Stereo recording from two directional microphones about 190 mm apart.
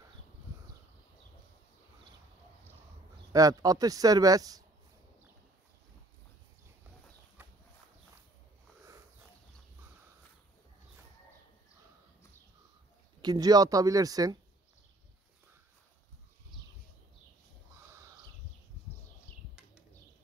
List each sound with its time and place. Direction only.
3.3 s speech: 20° right (ahead or behind)
7.4 s horse: 10° right (ahead or behind)
13.2 s speech: 20° right (ahead or behind)